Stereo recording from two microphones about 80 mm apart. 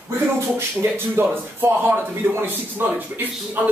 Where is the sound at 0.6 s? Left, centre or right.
Right.